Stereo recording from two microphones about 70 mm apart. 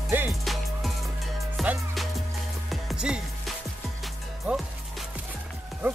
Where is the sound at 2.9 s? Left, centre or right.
Centre.